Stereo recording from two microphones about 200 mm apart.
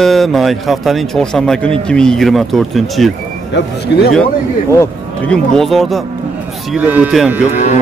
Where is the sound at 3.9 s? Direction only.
60° left (ahead or behind).